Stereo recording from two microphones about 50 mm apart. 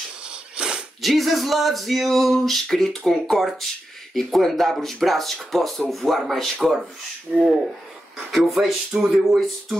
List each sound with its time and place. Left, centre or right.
0.2 s wheeze: centre
1.0 s speech: centre